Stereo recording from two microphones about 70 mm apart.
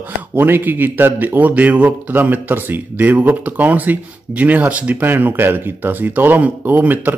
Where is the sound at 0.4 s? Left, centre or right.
Right.